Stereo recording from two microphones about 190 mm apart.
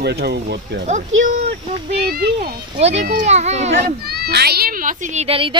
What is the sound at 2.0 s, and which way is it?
Speech, 50° right (ahead or behind).